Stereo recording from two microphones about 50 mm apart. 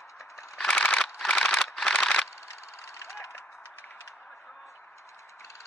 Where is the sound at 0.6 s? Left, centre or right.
Centre.